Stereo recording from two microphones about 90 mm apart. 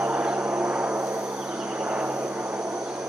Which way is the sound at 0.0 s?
15° right (ahead or behind).